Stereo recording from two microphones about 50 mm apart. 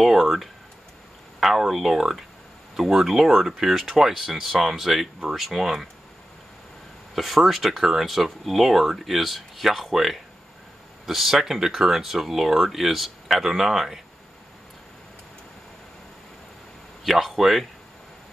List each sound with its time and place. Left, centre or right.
0.0 s speech: centre
7.2 s speech: centre
17.0 s speech: centre